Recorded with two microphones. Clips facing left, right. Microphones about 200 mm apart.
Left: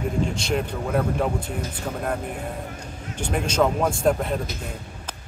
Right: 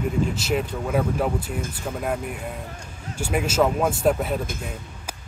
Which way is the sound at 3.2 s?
5° right (ahead or behind).